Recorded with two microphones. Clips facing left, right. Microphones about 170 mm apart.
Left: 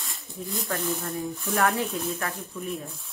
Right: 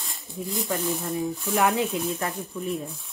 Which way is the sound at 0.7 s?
Centre (ahead or behind).